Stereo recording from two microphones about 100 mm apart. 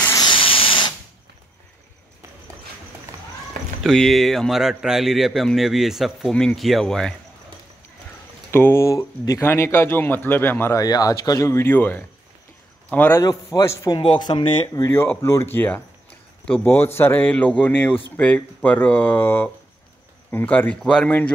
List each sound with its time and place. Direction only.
0.2 s a sound: 60° left (ahead or behind)
3.8 s a man's voice: 5° left (ahead or behind)
8.5 s speech: 25° left (ahead or behind)
9.5 s speech: 25° left (ahead or behind)
10.7 s speech: 40° left (ahead or behind); by 13.2 s 15° left (ahead or behind)
13.2 s a man's voice: 40° left (ahead or behind)
13.9 s speech: 50° left (ahead or behind)
15.2 s speech: 25° left (ahead or behind)